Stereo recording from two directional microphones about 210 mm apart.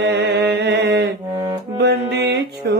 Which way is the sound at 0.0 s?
55° right (ahead or behind).